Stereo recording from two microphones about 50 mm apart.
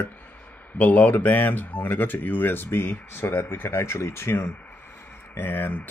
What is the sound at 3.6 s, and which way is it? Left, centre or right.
Speech, left.